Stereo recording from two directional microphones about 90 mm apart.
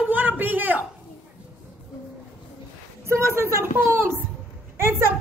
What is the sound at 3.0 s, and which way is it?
Speech, 30° right (ahead or behind).